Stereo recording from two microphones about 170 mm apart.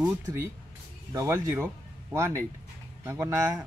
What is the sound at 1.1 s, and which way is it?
Speech, 20° right (ahead or behind).